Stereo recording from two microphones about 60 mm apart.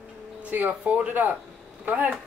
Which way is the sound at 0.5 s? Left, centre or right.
Right.